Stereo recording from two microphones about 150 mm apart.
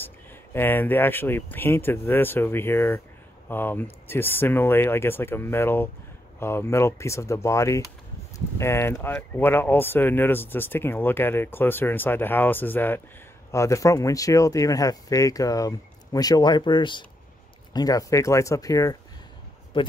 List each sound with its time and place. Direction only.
0.0 s speech: 15° left (ahead or behind)